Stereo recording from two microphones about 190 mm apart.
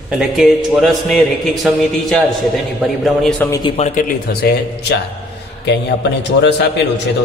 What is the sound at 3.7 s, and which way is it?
Speech, 35° left (ahead or behind).